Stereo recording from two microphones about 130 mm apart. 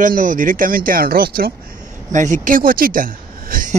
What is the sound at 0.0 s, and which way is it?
Speech, 85° right.